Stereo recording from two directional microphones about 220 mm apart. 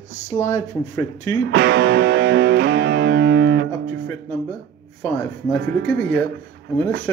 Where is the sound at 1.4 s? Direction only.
50° right (ahead or behind).